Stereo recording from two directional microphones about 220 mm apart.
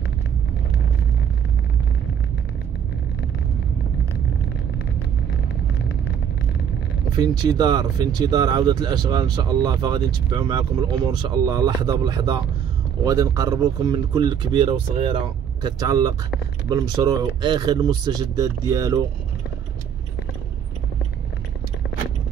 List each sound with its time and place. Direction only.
7.2 s speech: 20° right (ahead or behind)